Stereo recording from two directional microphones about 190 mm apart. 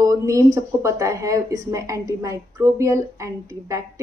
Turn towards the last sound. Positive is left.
turn(degrees=-15)  # may be behind; listen again after turning